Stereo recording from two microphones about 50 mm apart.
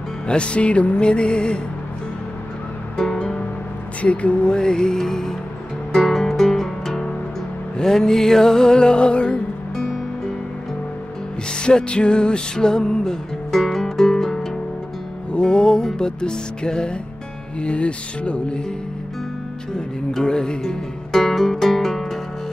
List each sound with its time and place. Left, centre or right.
0.3 s music: left
3.0 s music: centre
4.0 s music: left
9.8 s music: centre
11.5 s music: centre
20.1 s music: centre